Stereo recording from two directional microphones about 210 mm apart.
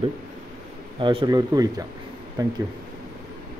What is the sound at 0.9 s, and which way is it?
Speech, 25° right (ahead or behind).